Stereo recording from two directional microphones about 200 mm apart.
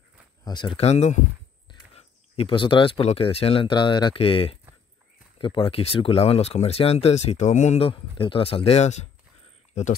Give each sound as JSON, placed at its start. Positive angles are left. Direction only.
{"t": 0.5, "sound": "speech", "side_deg": 25}